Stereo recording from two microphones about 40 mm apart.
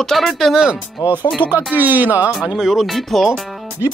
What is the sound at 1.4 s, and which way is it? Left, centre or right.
Speech, right.